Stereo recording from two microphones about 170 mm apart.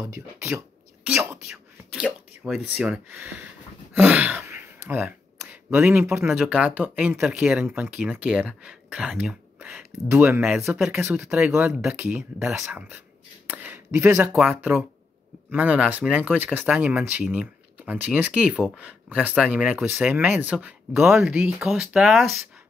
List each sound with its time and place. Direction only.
0.0 s speech: 15° right (ahead or behind)
1.5 s whispering: 5° right (ahead or behind)
2.4 s speech: 5° right (ahead or behind)
13.5 s a sound: 10° right (ahead or behind)
14.3 s speech: 5° right (ahead or behind)